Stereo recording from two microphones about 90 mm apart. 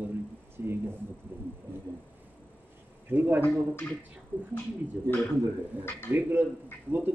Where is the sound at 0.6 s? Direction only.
25° right (ahead or behind).